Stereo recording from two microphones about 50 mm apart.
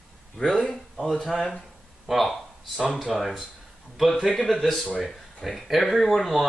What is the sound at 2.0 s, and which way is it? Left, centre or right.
Speech, centre.